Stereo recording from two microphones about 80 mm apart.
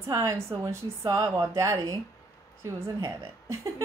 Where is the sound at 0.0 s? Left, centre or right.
Right.